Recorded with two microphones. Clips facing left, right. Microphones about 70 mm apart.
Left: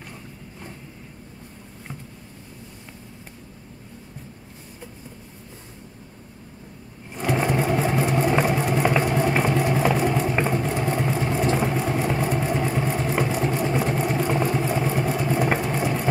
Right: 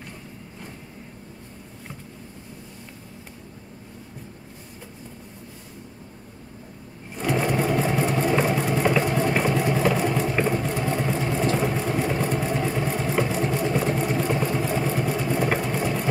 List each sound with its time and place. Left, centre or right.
7.2 s sewing machine: centre
9.3 s vehicle: centre
10.3 s sewing machine: centre
10.9 s vehicle: centre
12.2 s sewing machine: centre